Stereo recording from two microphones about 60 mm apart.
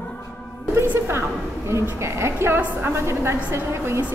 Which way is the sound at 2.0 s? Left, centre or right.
Right.